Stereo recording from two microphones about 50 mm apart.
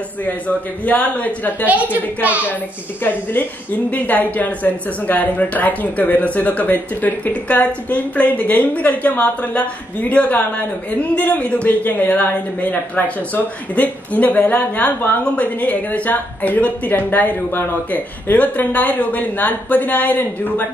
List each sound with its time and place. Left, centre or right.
0.2 s a woman's voice: left
3.0 s a woman's voice: left
17.5 s speech: left
17.9 s a woman's voice: left